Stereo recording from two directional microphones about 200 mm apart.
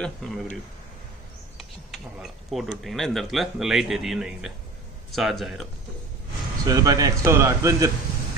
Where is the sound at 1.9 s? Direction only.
Centre (ahead or behind).